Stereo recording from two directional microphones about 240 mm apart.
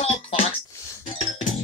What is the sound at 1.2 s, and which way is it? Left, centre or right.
Music, left.